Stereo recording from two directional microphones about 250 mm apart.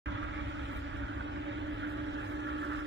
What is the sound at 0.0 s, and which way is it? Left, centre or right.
Vehicle, right.